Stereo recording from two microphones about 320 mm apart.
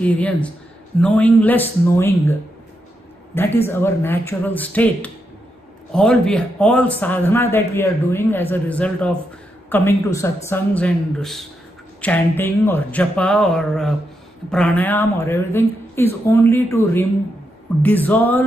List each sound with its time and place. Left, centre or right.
0.0 s speech: centre
3.3 s speech: centre